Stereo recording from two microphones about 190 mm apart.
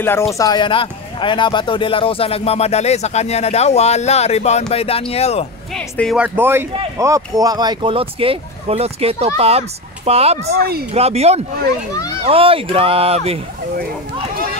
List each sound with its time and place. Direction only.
0.3 s speech: 20° left (ahead or behind)
5.8 s speech: 5° left (ahead or behind)
6.1 s speech: 10° right (ahead or behind); by 10.6 s 35° right (ahead or behind)
10.6 s speech: 55° right (ahead or behind)
10.9 s speech: 35° right (ahead or behind)